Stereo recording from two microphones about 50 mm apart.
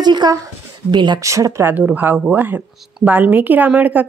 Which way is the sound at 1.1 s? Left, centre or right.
Right.